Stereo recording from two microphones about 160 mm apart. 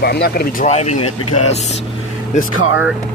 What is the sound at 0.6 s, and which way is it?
Speech, 45° left (ahead or behind).